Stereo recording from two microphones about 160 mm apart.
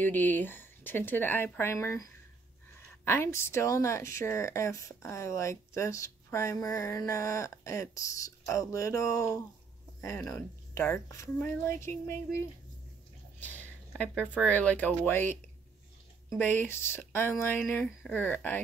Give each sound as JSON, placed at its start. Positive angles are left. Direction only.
{"t": 0.0, "sound": "speech", "side_deg": 10}
{"t": 3.1, "sound": "speech", "side_deg": 15}
{"t": 13.4, "sound": "a sound", "side_deg": 10}
{"t": 14.3, "sound": "speech", "side_deg": 10}
{"t": 16.3, "sound": "speech", "side_deg": 15}